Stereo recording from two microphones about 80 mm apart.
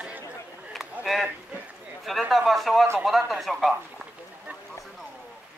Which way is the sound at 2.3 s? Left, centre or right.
Centre.